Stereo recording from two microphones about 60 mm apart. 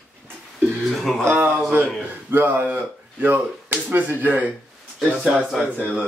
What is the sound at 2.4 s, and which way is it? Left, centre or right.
Speech, right.